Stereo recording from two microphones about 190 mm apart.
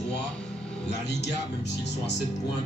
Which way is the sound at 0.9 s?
65° left (ahead or behind).